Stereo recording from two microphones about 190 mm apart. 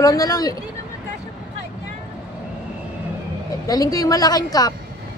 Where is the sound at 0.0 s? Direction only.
20° left (ahead or behind).